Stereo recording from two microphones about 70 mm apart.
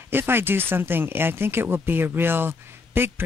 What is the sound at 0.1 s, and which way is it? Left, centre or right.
Speech, right.